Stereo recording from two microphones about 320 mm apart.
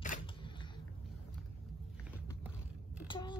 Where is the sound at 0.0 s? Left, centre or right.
Left.